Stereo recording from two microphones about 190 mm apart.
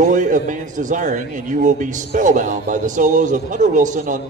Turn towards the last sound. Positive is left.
turn(degrees=-40)  # may be behind; listen again after turning